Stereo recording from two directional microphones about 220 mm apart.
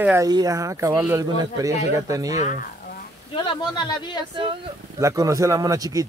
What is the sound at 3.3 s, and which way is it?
Speech, 20° left (ahead or behind).